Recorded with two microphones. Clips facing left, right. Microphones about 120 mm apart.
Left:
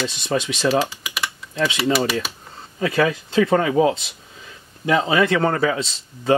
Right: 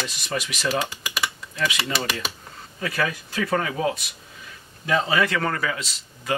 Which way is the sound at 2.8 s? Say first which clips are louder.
Left 7 dB; 25° left (ahead or behind).